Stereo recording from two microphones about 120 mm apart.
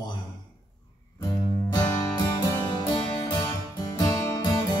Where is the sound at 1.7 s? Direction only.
35° left (ahead or behind).